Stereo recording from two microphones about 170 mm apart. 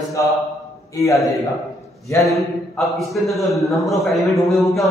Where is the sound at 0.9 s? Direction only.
20° left (ahead or behind).